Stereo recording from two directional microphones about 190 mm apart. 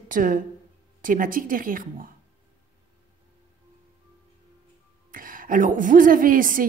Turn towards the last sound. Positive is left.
turn(degrees=-45)  # may be behind; listen again after turning